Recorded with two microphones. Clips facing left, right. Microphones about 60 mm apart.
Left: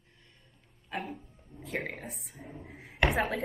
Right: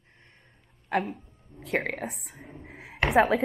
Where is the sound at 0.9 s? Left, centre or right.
Right.